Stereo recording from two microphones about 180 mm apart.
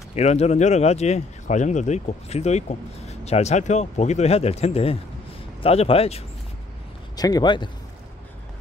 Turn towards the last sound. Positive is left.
turn(degrees=25)  # may be behind; listen again after turning